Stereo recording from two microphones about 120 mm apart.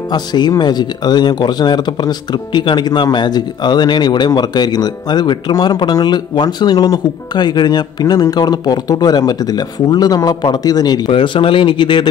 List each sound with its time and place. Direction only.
0.1 s speech: 35° left (ahead or behind)
11.1 s speech: 45° left (ahead or behind)